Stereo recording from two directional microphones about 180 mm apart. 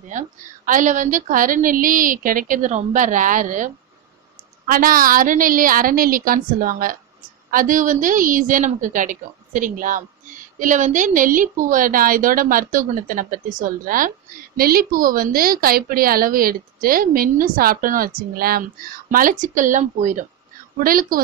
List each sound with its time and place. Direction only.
0.1 s a woman's voice: 45° right (ahead or behind)